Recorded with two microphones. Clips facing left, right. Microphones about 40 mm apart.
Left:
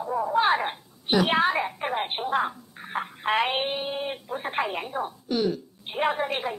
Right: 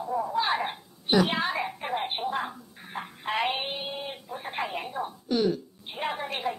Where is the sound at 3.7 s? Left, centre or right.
Left.